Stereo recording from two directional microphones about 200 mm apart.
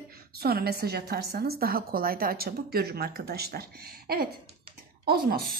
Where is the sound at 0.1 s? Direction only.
50° right (ahead or behind).